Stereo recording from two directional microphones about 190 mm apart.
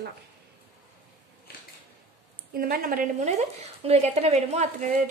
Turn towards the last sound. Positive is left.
turn(degrees=-40)  # may be behind; listen again after turning